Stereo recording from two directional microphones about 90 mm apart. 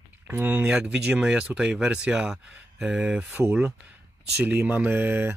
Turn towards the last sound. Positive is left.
turn(degrees=-25)  # may be behind; listen again after turning